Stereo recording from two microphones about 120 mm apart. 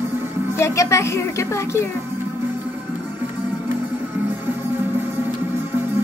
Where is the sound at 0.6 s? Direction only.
25° left (ahead or behind).